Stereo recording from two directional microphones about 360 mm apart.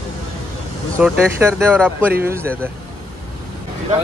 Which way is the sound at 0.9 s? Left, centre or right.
Centre.